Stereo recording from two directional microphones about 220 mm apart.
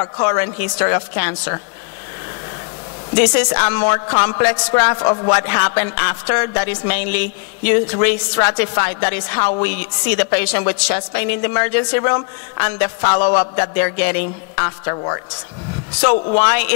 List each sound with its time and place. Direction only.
0.0 s speech: 20° left (ahead or behind)
3.2 s speech: 15° left (ahead or behind)
16.3 s speech: 15° left (ahead or behind)